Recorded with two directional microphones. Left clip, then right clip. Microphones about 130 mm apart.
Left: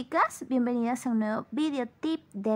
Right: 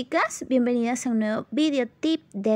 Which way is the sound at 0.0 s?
20° right (ahead or behind).